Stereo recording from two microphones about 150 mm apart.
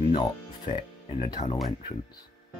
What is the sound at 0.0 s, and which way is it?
Music, 30° left (ahead or behind).